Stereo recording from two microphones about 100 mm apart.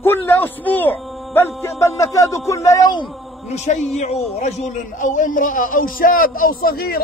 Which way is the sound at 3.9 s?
90° left.